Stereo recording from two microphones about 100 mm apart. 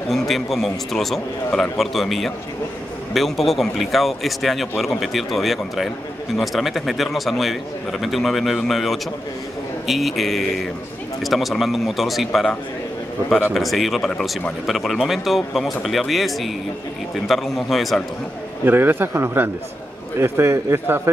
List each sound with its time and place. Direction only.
0.1 s speech: centre (ahead or behind)
18.7 s a man's voice: 20° right (ahead or behind)